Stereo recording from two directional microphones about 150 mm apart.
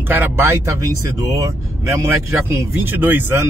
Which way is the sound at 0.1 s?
15° right (ahead or behind).